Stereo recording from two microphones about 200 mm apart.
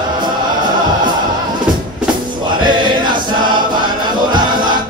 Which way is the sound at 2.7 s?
20° right (ahead or behind).